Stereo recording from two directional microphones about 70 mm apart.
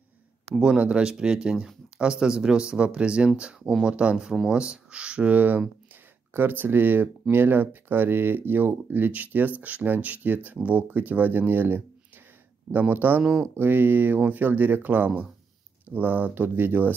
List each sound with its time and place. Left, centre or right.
0.6 s speech: centre
13.2 s speech: centre
13.6 s speech: right